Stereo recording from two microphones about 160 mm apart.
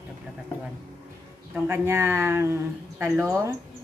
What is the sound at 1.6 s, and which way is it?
Speech, 15° right (ahead or behind).